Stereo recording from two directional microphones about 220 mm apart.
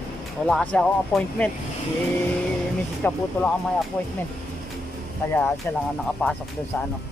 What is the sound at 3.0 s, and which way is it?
Speech, 10° left (ahead or behind).